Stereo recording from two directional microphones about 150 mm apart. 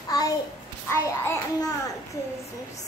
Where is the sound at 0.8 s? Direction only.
20° left (ahead or behind).